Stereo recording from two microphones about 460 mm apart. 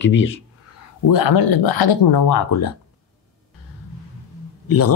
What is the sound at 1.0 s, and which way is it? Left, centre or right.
Speech, left.